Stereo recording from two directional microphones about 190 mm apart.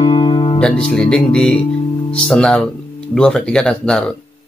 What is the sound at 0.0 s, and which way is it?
Music, 25° left (ahead or behind).